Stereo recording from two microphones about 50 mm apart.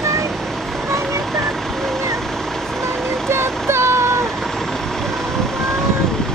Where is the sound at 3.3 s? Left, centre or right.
Right.